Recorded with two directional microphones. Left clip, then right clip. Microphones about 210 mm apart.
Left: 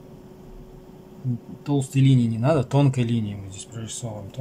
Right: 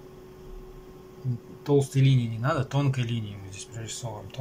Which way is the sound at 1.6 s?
15° left (ahead or behind).